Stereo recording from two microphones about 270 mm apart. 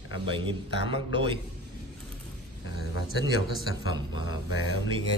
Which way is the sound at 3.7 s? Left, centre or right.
Left.